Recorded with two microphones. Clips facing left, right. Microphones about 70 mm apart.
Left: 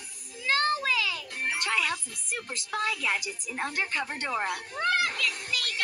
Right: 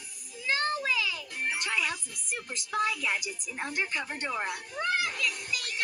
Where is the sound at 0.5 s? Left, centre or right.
Left.